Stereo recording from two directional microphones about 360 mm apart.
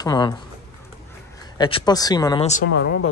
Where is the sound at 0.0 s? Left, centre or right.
Centre.